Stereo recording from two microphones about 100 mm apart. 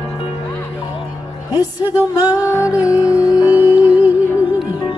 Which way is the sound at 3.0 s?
35° left (ahead or behind).